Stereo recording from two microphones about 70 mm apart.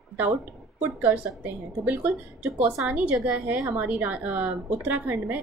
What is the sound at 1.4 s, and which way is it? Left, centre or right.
A woman's voice, right.